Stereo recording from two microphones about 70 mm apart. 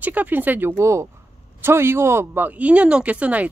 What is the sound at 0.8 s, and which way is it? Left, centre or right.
Speech, right.